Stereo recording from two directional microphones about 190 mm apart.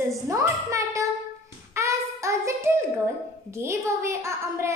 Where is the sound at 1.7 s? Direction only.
15° right (ahead or behind).